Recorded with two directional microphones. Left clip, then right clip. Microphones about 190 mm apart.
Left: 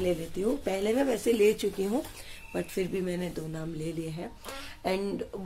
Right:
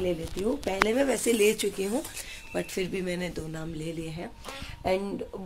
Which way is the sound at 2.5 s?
5° left (ahead or behind).